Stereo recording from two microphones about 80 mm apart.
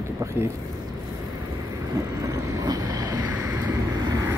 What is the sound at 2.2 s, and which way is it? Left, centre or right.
Vehicle, right.